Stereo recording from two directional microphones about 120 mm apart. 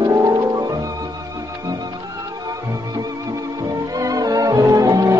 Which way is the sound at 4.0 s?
30° right (ahead or behind).